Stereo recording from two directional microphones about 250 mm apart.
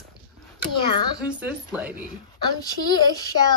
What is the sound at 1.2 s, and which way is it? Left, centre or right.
Speech, centre.